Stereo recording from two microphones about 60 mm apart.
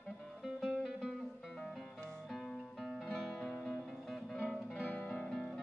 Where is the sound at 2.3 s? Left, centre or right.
Centre.